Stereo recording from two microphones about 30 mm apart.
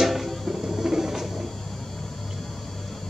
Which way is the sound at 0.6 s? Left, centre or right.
Centre.